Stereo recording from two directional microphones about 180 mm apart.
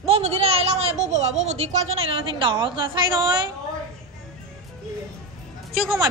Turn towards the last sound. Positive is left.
turn(degrees=0)  # may be behind; listen again after turning